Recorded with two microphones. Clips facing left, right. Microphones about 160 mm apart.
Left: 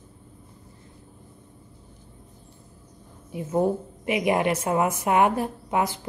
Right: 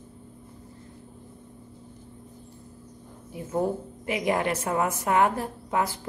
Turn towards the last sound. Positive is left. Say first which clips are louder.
# left 2 dB
turn(degrees=20)  # may be behind; listen again after turning